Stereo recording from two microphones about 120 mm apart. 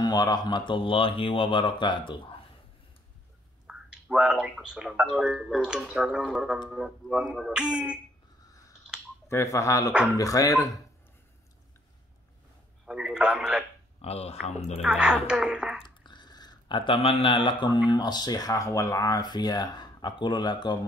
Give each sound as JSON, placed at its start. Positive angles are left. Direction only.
{"t": 0.0, "sound": "speech", "side_deg": 35}
{"t": 3.6, "sound": "speech", "side_deg": -5}
{"t": 9.3, "sound": "speech", "side_deg": 25}
{"t": 12.8, "sound": "speech", "side_deg": -5}
{"t": 14.0, "sound": "speech", "side_deg": 60}
{"t": 14.8, "sound": "speech", "side_deg": -5}
{"t": 16.0, "sound": "a sound", "side_deg": 40}
{"t": 17.8, "sound": "speech", "side_deg": 35}